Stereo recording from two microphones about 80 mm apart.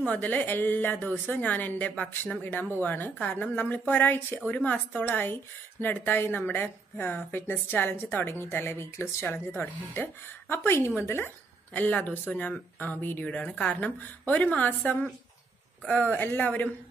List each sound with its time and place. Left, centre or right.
0.0 s a woman's voice: centre
15.8 s speech: centre